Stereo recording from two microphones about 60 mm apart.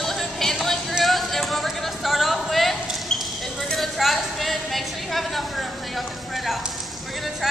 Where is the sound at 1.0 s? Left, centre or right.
Centre.